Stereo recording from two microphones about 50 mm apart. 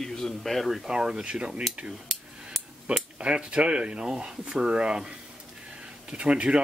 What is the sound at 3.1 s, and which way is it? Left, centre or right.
Speech, centre.